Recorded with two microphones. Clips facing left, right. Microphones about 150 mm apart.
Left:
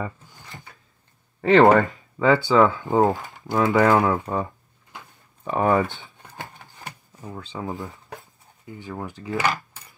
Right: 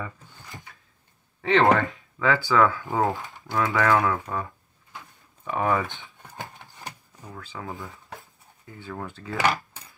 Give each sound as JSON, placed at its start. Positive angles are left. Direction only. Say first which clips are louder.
{"t": 1.4, "sound": "speech", "louder": "left 5 dB", "side_deg": 45}
{"t": 2.2, "sound": "speech", "louder": "left 4 dB", "side_deg": 25}
{"t": 3.2, "sound": "a sound", "louder": "left 1 dB", "side_deg": 0}
{"t": 3.5, "sound": "speech", "louder": "left 4 dB", "side_deg": 25}
{"t": 5.4, "sound": "speech", "louder": "left 5 dB", "side_deg": 35}
{"t": 6.2, "sound": "a sound", "louder": "even", "side_deg": 0}
{"t": 7.2, "sound": "speech", "louder": "left 5 dB", "side_deg": 25}
{"t": 8.6, "sound": "cutlery", "louder": "left 3 dB", "side_deg": 15}